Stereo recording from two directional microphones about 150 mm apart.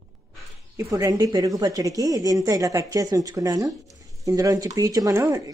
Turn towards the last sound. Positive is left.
turn(degrees=-20)  # may be behind; listen again after turning